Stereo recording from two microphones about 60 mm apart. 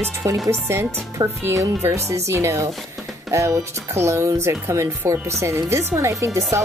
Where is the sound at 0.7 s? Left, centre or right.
Right.